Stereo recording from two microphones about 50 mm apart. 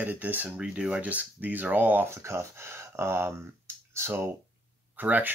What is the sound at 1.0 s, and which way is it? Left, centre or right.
Speech, right.